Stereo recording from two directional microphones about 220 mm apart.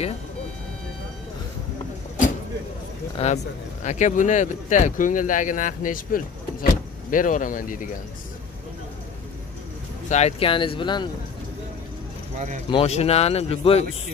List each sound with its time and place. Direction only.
3.2 s speech: 25° left (ahead or behind)
10.0 s speech: 30° left (ahead or behind)
12.4 s speech: 35° right (ahead or behind)
12.6 s speech: 25° left (ahead or behind)